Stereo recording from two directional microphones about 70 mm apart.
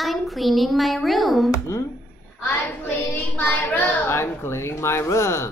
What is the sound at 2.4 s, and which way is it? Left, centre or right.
A woman's voice, left.